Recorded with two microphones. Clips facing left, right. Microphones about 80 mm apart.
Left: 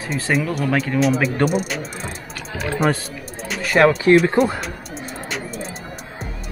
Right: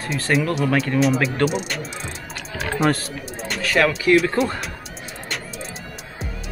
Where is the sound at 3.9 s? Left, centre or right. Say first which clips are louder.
Left 3 dB; left.